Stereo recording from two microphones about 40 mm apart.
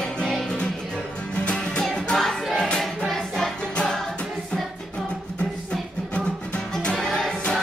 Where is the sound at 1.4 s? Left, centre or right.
Left.